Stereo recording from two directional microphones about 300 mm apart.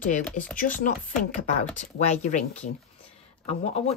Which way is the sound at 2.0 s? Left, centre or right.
Left.